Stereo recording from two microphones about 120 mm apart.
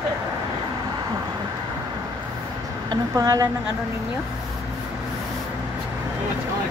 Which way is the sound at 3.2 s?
25° right (ahead or behind).